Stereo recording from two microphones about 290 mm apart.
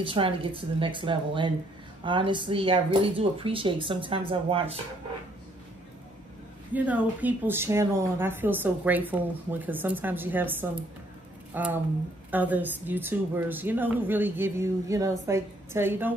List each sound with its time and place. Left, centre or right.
0.0 s speech: centre
6.7 s speech: centre